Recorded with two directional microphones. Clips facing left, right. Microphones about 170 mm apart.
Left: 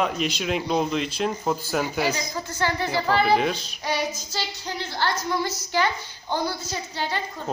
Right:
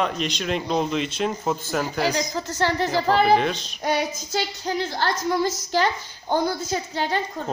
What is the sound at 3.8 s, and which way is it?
Child singing, 55° right (ahead or behind).